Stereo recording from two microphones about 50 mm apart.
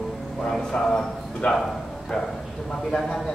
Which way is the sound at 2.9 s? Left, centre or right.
Centre.